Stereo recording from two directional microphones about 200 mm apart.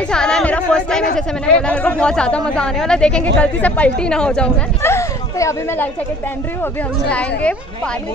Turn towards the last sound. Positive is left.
turn(degrees=5)  # may be behind; listen again after turning